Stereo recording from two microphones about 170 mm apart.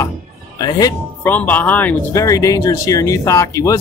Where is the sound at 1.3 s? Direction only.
10° left (ahead or behind).